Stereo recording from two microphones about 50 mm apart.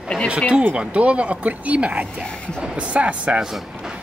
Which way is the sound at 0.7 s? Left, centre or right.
Right.